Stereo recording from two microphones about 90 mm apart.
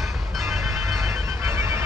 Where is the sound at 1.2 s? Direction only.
35° right (ahead or behind).